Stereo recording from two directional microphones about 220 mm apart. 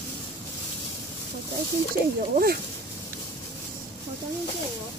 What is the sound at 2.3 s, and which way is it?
Speech, 45° right (ahead or behind).